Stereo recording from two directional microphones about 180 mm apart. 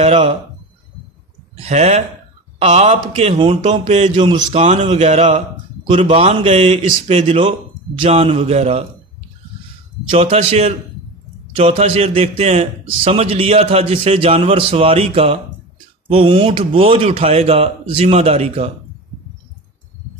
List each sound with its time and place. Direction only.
0.0 s speech: 35° right (ahead or behind)
1.7 s a man's voice: 35° right (ahead or behind)
10.1 s a man's voice: 35° right (ahead or behind)